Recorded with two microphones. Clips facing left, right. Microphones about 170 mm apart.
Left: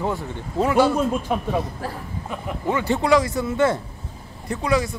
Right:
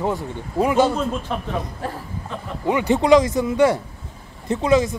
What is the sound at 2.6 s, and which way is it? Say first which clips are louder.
Speech: right 4 dB; 15° right (ahead or behind).